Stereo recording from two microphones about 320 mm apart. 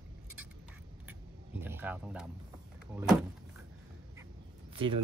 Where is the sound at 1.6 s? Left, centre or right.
Centre.